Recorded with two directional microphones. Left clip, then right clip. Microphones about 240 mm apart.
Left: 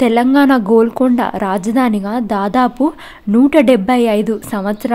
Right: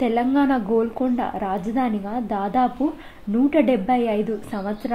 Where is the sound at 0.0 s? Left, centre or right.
Left.